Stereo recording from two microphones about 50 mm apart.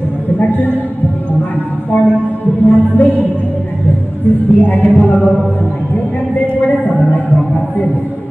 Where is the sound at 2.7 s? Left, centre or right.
Left.